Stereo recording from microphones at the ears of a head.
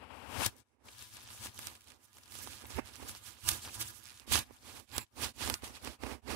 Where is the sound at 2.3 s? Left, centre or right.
Right.